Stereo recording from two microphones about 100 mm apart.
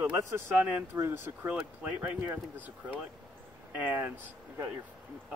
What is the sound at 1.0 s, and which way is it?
Speech, 25° right (ahead or behind).